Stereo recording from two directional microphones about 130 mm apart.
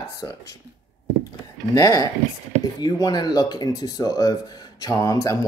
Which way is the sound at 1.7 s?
30° left (ahead or behind).